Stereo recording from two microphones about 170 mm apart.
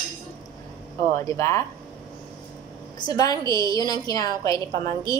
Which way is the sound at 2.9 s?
25° left (ahead or behind).